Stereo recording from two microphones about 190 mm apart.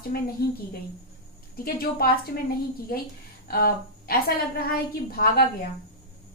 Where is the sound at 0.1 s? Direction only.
55° left (ahead or behind).